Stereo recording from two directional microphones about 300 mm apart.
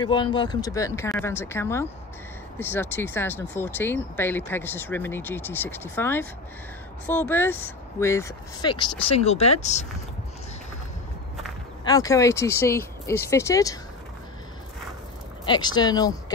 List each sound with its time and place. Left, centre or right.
0.0 s speech: centre
11.8 s speech: centre
15.4 s speech: centre